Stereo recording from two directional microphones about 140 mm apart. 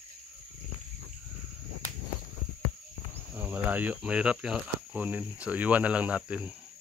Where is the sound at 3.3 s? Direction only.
15° right (ahead or behind).